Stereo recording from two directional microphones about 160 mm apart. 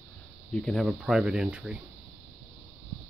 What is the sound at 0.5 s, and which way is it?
Speech, 5° left (ahead or behind).